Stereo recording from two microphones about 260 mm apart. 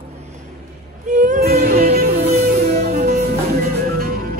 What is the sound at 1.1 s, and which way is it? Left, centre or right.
Music, right.